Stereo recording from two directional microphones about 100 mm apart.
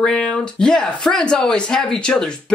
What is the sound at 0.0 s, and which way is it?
Speech, 5° left (ahead or behind).